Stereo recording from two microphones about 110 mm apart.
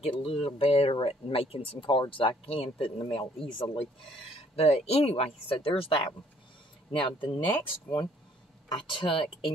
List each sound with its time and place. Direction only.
0.0 s speech: 55° left (ahead or behind)
1.8 s speech: 50° left (ahead or behind)
4.6 s speech: 70° left (ahead or behind)
7.0 s speech: 45° left (ahead or behind)
8.7 s speech: 50° left (ahead or behind)